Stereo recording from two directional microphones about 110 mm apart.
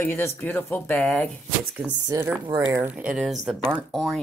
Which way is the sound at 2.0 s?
20° right (ahead or behind).